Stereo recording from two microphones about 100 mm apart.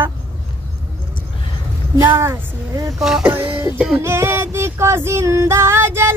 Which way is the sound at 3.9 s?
25° right (ahead or behind).